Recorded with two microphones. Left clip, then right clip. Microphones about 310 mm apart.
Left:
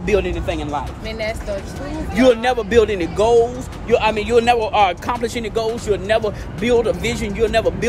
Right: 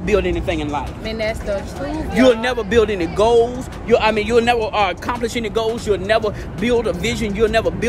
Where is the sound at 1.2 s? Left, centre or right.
Centre.